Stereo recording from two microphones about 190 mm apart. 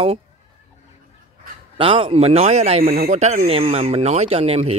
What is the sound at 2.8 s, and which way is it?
Speech, 50° right (ahead or behind).